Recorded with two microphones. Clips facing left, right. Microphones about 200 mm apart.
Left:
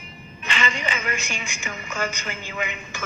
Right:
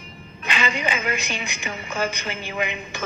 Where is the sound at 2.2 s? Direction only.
20° right (ahead or behind).